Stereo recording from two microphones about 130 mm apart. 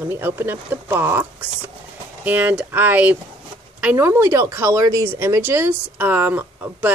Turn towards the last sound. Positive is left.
turn(degrees=-15)  # may be behind; listen again after turning